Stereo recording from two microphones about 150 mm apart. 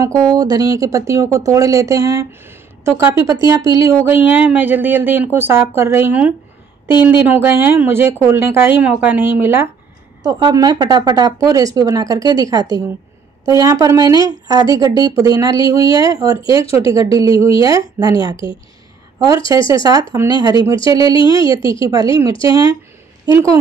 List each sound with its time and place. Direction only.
0.0 s speech: 25° right (ahead or behind)
10.2 s speech: 25° right (ahead or behind)
19.1 s speech: 25° right (ahead or behind)
21.5 s a woman's voice: 35° left (ahead or behind)
21.8 s speech: 20° right (ahead or behind)
22.1 s a woman's voice: 35° left (ahead or behind)
22.5 s speech: 25° right (ahead or behind)